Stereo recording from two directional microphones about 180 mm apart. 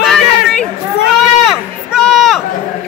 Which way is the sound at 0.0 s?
Centre (ahead or behind).